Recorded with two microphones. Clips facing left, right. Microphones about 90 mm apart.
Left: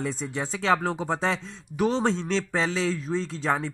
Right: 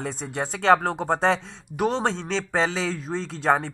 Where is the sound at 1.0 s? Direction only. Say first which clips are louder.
Right 4 dB; 65° right (ahead or behind).